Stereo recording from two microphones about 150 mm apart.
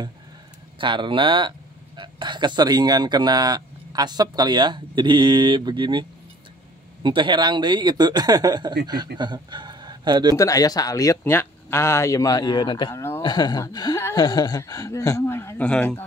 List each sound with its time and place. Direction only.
0.7 s speech: 30° right (ahead or behind)
10.3 s speech: 20° left (ahead or behind)
12.9 s speech: 15° left (ahead or behind)
13.2 s speech: 25° left (ahead or behind); by 16.0 s 5° left (ahead or behind)